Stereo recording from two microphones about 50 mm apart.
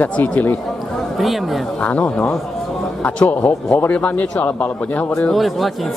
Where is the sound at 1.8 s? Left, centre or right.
Left.